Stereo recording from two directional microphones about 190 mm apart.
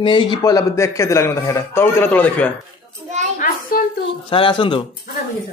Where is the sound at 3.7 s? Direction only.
50° left (ahead or behind).